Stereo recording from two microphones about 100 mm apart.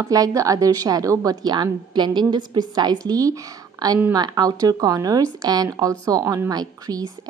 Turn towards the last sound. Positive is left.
turn(degrees=-40)  # may be behind; listen again after turning